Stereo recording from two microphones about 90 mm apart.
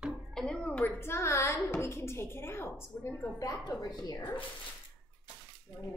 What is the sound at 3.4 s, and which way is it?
A woman's voice, 40° left (ahead or behind).